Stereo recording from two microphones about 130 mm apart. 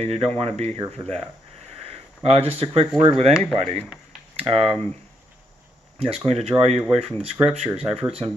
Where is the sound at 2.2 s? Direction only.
50° right (ahead or behind).